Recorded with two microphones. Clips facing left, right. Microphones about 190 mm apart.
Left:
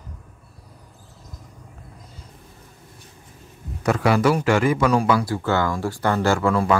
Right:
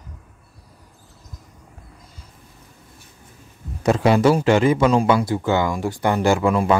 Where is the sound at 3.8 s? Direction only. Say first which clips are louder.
Right 3 dB; 25° right (ahead or behind).